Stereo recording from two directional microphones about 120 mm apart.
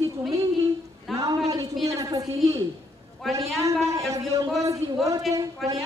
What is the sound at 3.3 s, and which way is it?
Speech, centre (ahead or behind).